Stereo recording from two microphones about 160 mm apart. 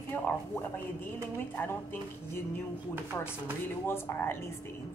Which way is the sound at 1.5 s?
10° left (ahead or behind).